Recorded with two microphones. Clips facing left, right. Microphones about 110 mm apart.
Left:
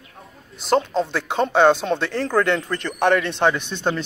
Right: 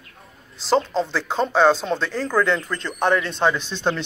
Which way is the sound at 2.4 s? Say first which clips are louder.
Left 1 dB; 65° left (ahead or behind).